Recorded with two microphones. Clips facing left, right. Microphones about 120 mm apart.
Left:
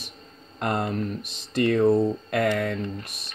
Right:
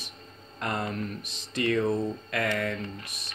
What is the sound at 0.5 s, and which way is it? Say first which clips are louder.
Speech: left 5 dB; 55° left (ahead or behind).